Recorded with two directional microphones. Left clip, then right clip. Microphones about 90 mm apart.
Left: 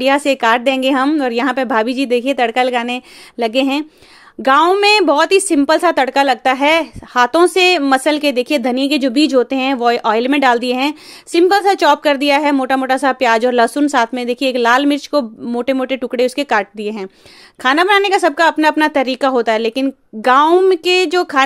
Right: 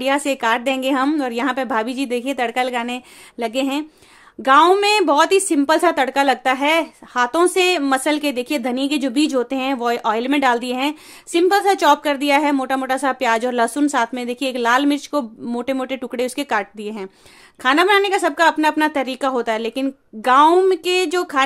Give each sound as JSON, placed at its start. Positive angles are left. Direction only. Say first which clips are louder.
{"t": 0.0, "sound": "speech", "louder": "left 6 dB", "side_deg": 35}